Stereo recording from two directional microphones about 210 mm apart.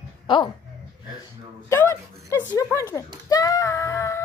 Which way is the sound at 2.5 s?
15° left (ahead or behind).